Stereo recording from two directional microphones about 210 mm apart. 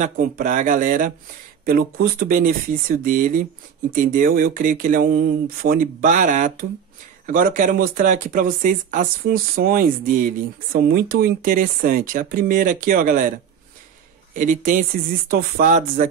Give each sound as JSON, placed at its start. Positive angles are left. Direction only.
{"t": 0.0, "sound": "speech", "side_deg": -40}
{"t": 14.3, "sound": "speech", "side_deg": -40}